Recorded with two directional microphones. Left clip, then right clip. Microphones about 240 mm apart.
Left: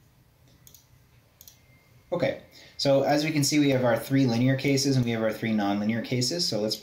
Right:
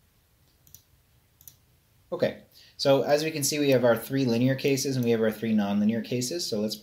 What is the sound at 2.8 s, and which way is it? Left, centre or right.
Speech, right.